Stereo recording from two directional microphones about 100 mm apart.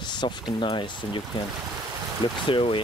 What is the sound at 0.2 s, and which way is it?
Speech, 55° left (ahead or behind).